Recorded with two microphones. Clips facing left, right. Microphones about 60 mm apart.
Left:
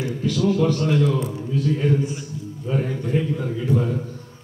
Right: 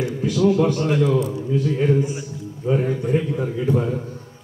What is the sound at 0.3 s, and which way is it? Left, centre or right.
A man's voice, centre.